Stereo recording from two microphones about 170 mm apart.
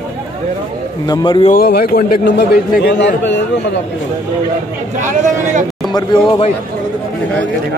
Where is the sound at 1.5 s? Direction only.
60° left (ahead or behind); by 3.4 s 90° left.